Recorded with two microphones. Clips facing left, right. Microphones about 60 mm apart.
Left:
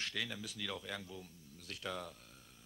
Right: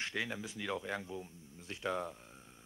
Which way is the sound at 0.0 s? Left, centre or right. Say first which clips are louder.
Right 3 dB; right.